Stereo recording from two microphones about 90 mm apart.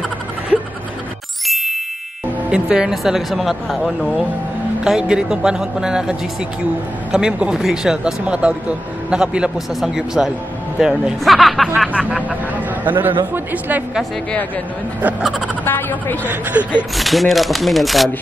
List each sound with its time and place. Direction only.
1.5 s ding: centre (ahead or behind)
2.5 s speech: 5° right (ahead or behind)
11.9 s speech: 10° right (ahead or behind)
12.8 s a man's voice: 20° right (ahead or behind)
15.4 s speech: 20° left (ahead or behind)
16.5 s speech: 15° right (ahead or behind)
16.9 s speech: centre (ahead or behind)